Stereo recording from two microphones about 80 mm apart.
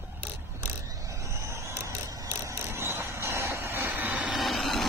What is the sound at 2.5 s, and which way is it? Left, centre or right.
Vehicle, right.